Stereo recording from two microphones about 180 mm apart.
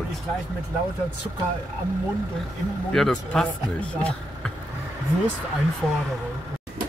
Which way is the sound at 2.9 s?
5° left (ahead or behind).